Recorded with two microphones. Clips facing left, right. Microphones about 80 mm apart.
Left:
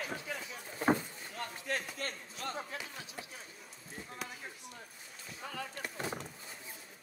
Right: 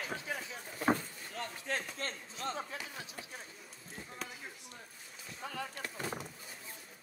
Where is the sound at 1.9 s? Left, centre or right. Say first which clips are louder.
Even; right.